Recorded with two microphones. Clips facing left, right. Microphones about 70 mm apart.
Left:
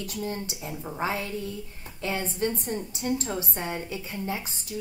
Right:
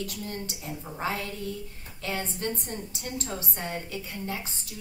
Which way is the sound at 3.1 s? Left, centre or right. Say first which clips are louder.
Left 5 dB; centre.